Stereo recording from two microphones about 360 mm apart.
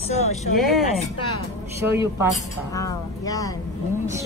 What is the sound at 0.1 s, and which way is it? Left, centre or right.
Speech, centre.